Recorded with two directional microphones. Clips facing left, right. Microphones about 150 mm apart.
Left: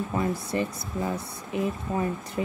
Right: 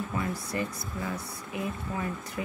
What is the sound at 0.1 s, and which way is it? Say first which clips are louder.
Speech: left 5 dB; 25° left (ahead or behind).